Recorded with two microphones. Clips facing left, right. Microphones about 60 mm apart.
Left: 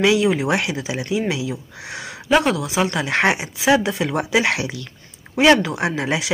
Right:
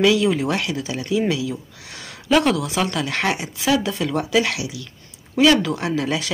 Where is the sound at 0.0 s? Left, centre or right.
Centre.